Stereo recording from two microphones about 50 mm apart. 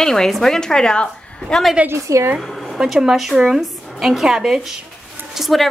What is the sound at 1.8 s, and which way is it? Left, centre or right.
Speech, right.